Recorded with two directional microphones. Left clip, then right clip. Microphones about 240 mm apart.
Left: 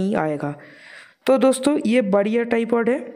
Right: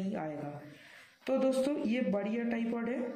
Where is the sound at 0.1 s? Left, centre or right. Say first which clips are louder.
Left 16 dB; left.